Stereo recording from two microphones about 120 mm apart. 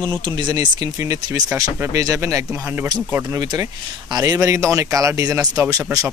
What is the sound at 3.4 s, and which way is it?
Speech, 35° right (ahead or behind).